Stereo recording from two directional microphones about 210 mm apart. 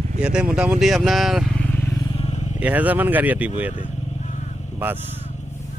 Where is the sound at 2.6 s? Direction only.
10° right (ahead or behind).